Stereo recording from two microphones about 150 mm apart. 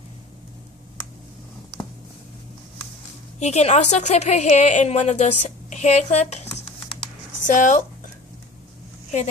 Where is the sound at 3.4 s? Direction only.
50° left (ahead or behind).